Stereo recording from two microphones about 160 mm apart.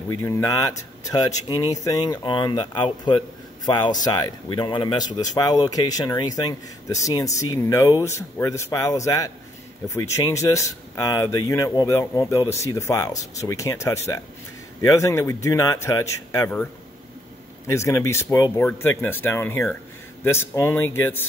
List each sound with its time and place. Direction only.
0.1 s speech: 20° left (ahead or behind)
17.6 s speech: 15° left (ahead or behind)